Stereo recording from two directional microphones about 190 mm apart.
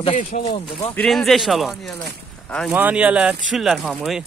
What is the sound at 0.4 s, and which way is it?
Speech, 25° left (ahead or behind).